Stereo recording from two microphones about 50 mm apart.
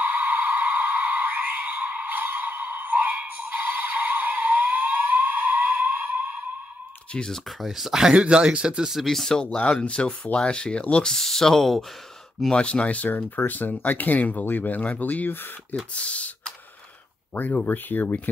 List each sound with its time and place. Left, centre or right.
0.0 s a sound: right
7.6 s speech: centre
8.2 s speech: centre
9.0 s speech: centre
11.1 s speech: centre
12.5 s speech: left
17.3 s speech: left